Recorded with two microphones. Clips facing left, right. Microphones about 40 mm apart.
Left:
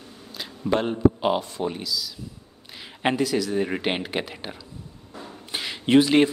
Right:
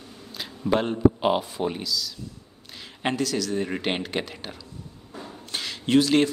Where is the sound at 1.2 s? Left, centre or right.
Centre.